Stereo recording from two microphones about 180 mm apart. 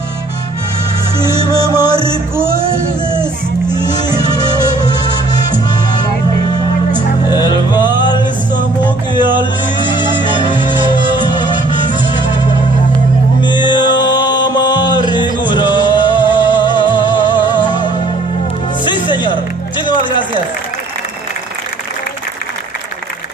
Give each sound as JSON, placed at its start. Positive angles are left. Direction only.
{"t": 1.2, "sound": "music", "side_deg": 20}
{"t": 5.5, "sound": "music", "side_deg": 20}
{"t": 7.2, "sound": "music", "side_deg": 25}
{"t": 9.1, "sound": "music", "side_deg": 25}
{"t": 13.4, "sound": "music", "side_deg": 25}
{"t": 15.0, "sound": "music", "side_deg": -25}
{"t": 15.4, "sound": "music", "side_deg": 25}